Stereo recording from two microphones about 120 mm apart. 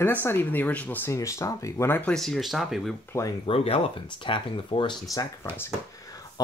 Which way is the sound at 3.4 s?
50° left (ahead or behind).